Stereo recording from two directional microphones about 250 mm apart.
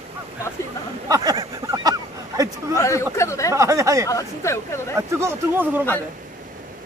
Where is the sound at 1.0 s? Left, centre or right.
Centre.